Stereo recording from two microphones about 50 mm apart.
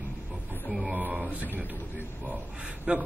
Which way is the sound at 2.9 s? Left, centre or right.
Right.